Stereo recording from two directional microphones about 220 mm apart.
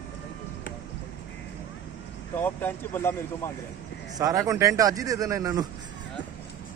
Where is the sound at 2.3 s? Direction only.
10° left (ahead or behind).